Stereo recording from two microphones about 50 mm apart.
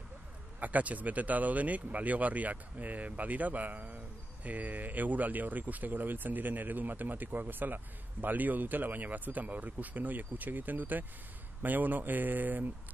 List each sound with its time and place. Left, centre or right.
0.6 s speech: right